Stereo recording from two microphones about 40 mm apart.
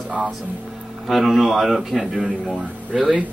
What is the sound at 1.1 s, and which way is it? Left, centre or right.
Speech, centre.